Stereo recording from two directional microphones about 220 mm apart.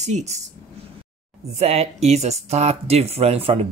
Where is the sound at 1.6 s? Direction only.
30° right (ahead or behind).